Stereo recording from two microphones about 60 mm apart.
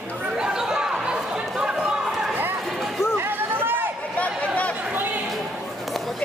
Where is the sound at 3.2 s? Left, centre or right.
Right.